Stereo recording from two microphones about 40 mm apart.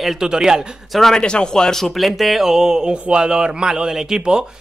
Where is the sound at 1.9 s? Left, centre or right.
Centre.